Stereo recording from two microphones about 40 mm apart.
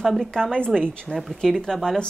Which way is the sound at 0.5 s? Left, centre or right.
Left.